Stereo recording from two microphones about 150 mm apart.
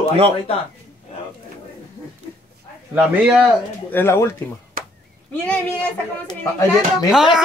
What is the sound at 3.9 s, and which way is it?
Speech, 15° left (ahead or behind).